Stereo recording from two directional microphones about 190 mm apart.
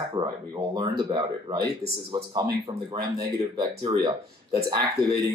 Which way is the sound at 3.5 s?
25° right (ahead or behind).